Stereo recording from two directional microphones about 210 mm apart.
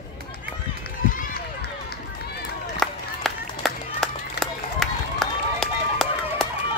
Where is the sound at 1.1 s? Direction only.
45° left (ahead or behind).